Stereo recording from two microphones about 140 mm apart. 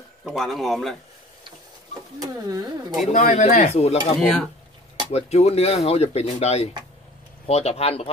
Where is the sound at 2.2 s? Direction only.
25° right (ahead or behind).